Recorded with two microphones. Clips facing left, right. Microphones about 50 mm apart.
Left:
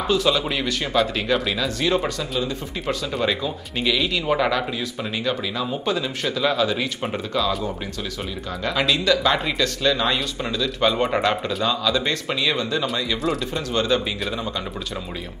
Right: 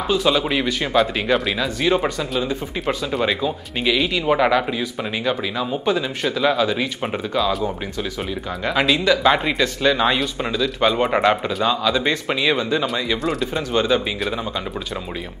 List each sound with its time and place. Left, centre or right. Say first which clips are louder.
0.1 s speech: right 2 dB; centre
13.2 s speech: right 1 dB; centre
13.7 s speech: right 3 dB; centre